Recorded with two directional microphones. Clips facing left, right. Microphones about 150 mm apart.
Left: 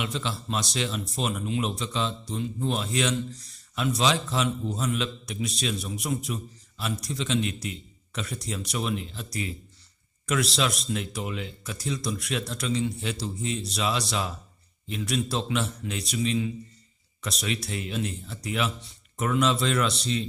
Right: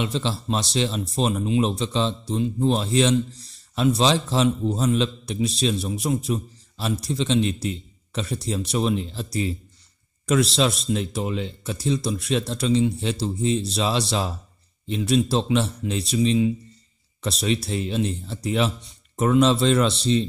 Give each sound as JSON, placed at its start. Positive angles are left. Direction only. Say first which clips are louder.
{"t": 0.0, "sound": "speech", "louder": "right 6 dB", "side_deg": -30}